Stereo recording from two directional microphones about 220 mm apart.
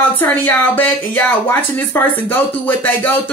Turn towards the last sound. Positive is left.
turn(degrees=10)  # may be behind; listen again after turning